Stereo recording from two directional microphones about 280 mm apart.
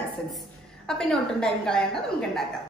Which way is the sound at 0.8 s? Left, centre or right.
Centre.